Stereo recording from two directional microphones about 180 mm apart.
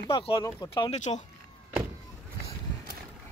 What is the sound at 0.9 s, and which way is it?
Speech, 40° left (ahead or behind).